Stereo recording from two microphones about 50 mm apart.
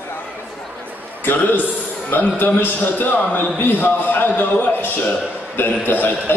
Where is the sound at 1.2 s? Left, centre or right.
Left.